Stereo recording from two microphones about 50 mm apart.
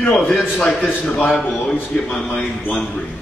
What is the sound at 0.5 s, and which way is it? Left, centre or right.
Speech, centre.